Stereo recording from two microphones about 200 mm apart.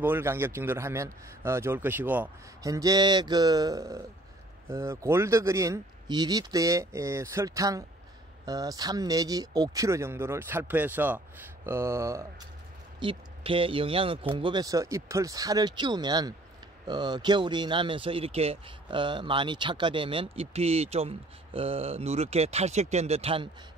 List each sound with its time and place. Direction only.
0.0 s a man's voice: 10° right (ahead or behind)
13.0 s speech: 25° right (ahead or behind)